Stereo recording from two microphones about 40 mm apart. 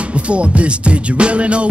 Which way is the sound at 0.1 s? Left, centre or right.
Right.